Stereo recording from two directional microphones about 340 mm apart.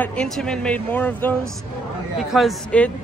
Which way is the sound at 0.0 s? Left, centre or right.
Centre.